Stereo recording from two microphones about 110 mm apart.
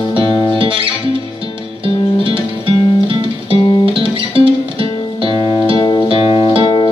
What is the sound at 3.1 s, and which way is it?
Music, 55° right (ahead or behind).